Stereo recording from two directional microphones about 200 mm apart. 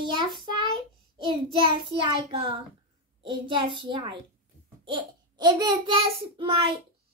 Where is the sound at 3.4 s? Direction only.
25° right (ahead or behind).